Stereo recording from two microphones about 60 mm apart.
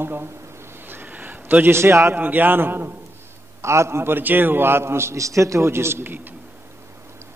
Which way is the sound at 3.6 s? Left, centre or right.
Right.